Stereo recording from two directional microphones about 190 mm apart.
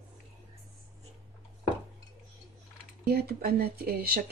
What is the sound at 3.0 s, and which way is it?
Speech, 55° right (ahead or behind).